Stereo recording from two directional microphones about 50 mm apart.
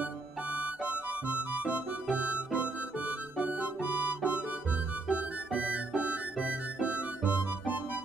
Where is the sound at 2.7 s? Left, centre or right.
Right.